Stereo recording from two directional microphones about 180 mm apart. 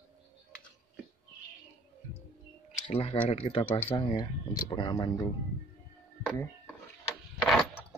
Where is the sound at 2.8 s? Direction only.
30° left (ahead or behind).